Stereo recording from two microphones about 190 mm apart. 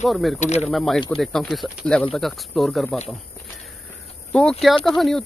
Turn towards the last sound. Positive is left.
turn(degrees=0)  # may be behind; listen again after turning